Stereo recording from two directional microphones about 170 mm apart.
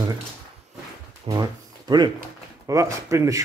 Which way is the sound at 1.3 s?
20° right (ahead or behind).